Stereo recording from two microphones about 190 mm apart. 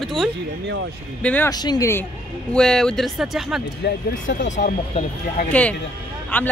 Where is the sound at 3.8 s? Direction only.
65° left (ahead or behind).